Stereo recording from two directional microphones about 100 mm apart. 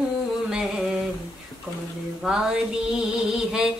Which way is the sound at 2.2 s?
5° right (ahead or behind).